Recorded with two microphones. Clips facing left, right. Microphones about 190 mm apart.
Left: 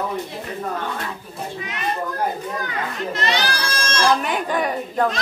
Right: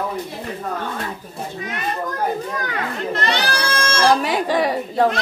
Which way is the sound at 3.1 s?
60° right (ahead or behind).